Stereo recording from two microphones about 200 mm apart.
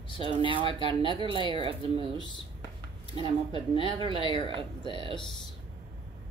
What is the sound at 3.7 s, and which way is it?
Speech, 25° left (ahead or behind).